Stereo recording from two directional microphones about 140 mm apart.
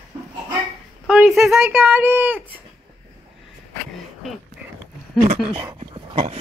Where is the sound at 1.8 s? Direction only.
15° right (ahead or behind).